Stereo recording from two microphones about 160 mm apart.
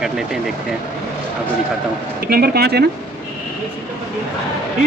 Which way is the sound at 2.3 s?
85° right.